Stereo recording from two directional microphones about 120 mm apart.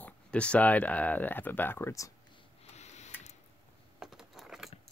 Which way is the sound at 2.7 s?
70° left (ahead or behind).